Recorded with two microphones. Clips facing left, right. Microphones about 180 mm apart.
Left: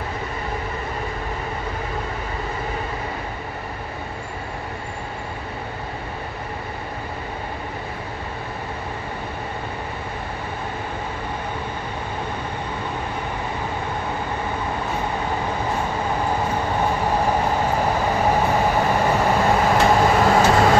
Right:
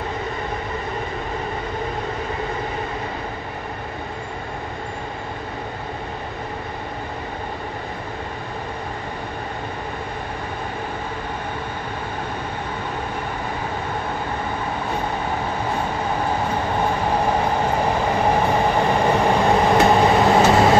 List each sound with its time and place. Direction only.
18.5 s vehicle: 5° left (ahead or behind)